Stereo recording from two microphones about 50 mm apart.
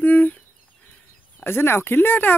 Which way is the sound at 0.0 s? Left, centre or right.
Left.